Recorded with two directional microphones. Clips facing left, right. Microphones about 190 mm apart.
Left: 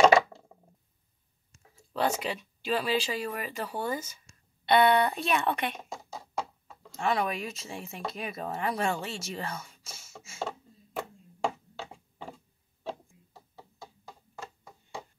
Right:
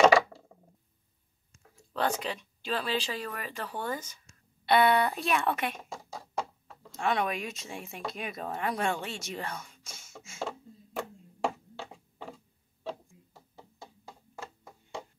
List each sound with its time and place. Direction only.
2.0 s speech: 10° left (ahead or behind)
4.6 s speech: centre (ahead or behind)
6.9 s speech: centre (ahead or behind)